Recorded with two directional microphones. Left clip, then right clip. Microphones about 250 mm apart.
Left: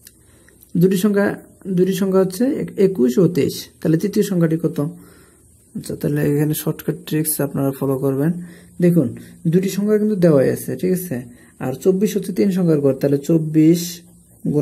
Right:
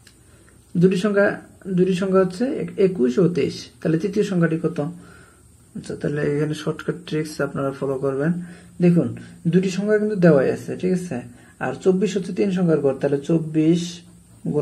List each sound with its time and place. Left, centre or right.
0.7 s speech: left
5.9 s speech: left
9.5 s speech: left